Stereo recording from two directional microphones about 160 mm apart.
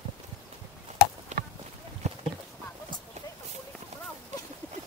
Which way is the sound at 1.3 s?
45° right (ahead or behind).